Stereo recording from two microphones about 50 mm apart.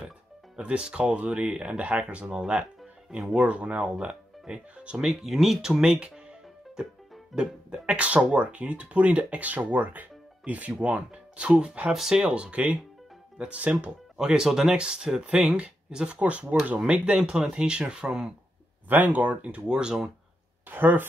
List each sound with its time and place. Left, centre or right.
0.6 s speech: right
5.0 s speech: centre
5.9 s music: centre
7.3 s speech: centre
11.9 s speech: centre
12.2 s speech: right
14.1 s speech: centre
15.3 s speech: right
17.2 s speech: centre
18.9 s speech: right; by 20.1 s centre
20.6 s speech: right